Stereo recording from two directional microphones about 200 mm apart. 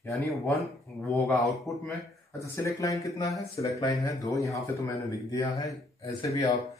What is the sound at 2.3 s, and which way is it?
Speech, 15° left (ahead or behind).